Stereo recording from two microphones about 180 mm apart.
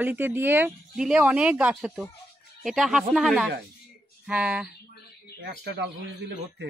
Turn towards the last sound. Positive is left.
turn(degrees=-70)  # may be behind; listen again after turning